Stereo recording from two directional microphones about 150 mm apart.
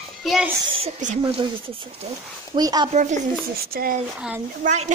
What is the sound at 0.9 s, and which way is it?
Speech, 55° right (ahead or behind).